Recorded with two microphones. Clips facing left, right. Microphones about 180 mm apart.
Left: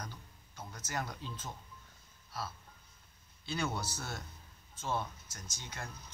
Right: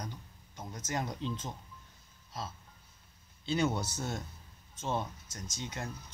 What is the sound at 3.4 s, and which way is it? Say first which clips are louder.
A man's voice: right 6 dB; 20° right (ahead or behind).